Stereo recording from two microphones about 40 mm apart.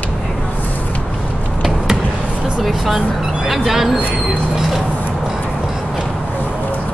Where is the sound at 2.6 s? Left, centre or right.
Centre.